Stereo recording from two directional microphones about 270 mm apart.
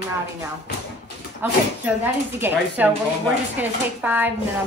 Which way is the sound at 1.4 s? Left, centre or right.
Centre.